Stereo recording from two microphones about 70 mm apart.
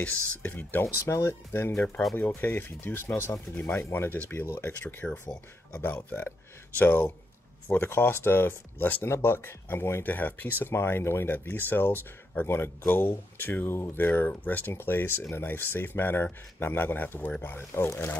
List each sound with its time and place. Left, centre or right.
0.0 s speech: left
1.0 s speech: left
1.8 s speech: centre
2.1 s speech: left
5.0 s speech: left
5.3 s speech: left